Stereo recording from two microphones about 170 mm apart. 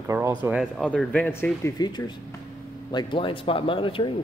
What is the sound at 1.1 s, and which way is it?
A man's voice, 10° left (ahead or behind).